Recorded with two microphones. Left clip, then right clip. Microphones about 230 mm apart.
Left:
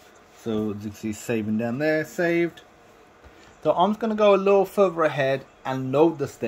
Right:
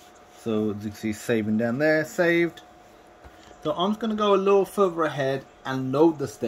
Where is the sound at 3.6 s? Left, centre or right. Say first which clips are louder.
Left 5 dB; centre.